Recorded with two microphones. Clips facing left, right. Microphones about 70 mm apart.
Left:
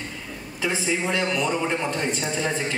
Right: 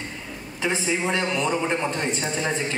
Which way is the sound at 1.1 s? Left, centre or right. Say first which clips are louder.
Even; right.